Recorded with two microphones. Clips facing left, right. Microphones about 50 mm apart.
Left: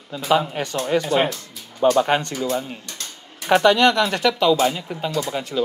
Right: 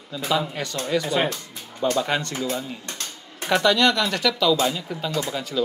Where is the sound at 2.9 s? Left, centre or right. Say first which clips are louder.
Right 1 dB; right.